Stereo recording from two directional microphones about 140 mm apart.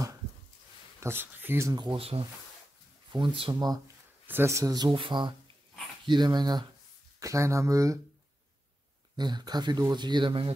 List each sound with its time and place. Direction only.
1.0 s speech: 15° right (ahead or behind)
1.7 s speech: 35° right (ahead or behind)
3.5 s speech: 25° right (ahead or behind)
9.1 s speech: 30° right (ahead or behind)